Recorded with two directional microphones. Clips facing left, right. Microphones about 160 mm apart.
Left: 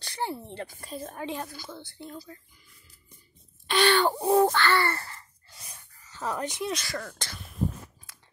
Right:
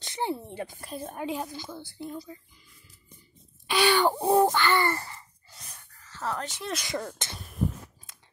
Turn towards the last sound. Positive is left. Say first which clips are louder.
# right 3 dB
turn(degrees=-20)  # may be behind; listen again after turning